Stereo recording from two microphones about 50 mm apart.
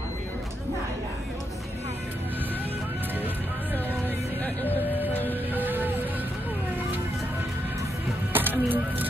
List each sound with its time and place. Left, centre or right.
5.5 s music: right
8.3 s music: right